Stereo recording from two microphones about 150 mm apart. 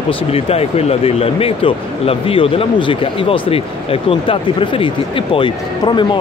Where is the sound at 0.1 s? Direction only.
40° left (ahead or behind).